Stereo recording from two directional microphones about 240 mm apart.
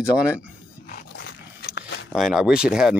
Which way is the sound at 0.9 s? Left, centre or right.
Left.